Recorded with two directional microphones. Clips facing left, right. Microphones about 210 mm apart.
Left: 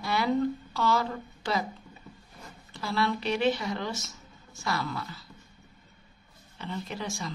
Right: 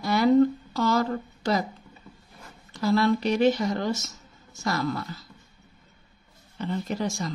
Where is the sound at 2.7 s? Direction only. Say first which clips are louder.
Right 7 dB; 40° right (ahead or behind).